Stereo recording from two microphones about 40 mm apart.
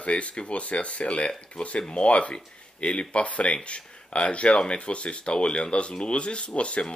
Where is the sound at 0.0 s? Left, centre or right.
Left.